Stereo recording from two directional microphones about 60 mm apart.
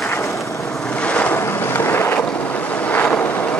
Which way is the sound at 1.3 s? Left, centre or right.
Left.